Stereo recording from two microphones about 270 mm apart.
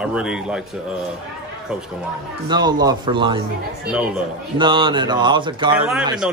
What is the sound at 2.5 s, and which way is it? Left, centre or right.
Speech, centre.